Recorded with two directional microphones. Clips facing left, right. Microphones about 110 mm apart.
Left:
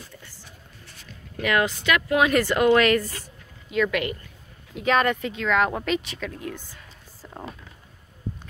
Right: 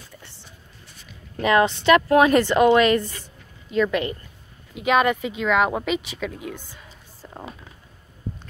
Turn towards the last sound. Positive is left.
turn(degrees=0)  # may be behind; listen again after turning